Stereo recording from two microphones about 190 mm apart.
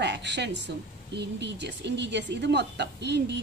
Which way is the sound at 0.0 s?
65° right (ahead or behind).